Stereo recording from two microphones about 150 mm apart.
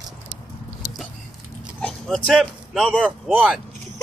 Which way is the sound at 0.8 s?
75° left (ahead or behind).